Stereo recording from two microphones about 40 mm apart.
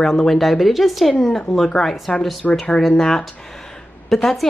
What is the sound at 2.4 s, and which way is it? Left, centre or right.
Speech, left.